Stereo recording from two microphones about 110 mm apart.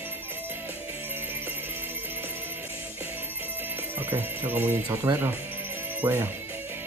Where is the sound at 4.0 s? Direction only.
20° right (ahead or behind).